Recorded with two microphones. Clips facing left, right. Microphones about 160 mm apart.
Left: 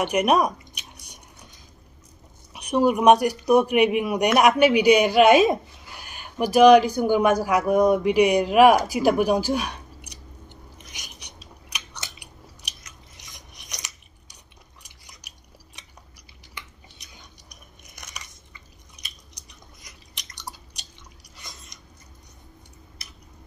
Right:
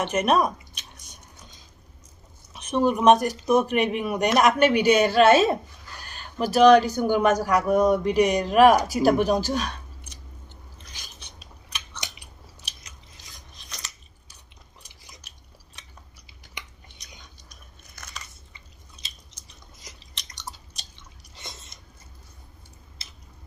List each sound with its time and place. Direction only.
0.0 s squish: 15° left (ahead or behind)
2.5 s a man's voice: 15° left (ahead or behind)
13.2 s filing: 20° left (ahead or behind)
17.0 s biting: 15° left (ahead or behind)
18.5 s a sound: 25° right (ahead or behind)
20.5 s chewing: 10° left (ahead or behind)
21.4 s biting: 25° right (ahead or behind)